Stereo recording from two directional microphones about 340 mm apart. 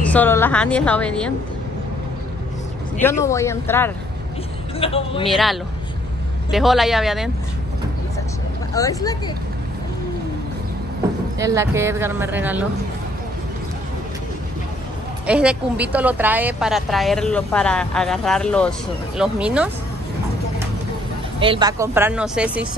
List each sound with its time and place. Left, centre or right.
0.0 s a woman's voice: centre
3.0 s speech: centre
5.2 s a woman's voice: centre
8.7 s speech: centre
11.3 s speech: centre
15.2 s a woman's voice: centre
21.4 s speech: centre